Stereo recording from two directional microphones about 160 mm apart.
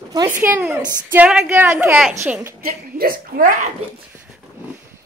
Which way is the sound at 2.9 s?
65° right (ahead or behind).